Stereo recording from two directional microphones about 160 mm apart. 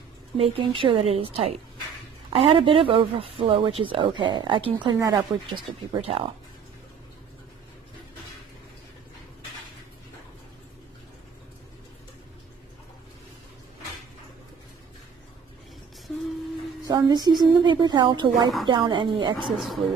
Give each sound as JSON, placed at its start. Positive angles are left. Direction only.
{"t": 0.4, "sound": "speech", "side_deg": -35}
{"t": 16.8, "sound": "speech", "side_deg": -25}